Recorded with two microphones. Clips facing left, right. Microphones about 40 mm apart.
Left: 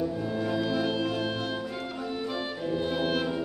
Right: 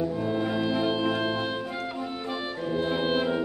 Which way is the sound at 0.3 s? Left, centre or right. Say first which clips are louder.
Right 2 dB; right.